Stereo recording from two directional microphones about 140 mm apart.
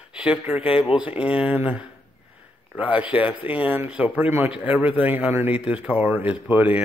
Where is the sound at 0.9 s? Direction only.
10° right (ahead or behind).